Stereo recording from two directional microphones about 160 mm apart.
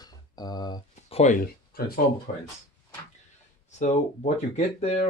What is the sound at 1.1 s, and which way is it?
Speech, 45° left (ahead or behind).